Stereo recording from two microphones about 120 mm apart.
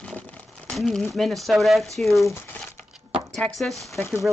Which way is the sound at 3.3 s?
Centre (ahead or behind).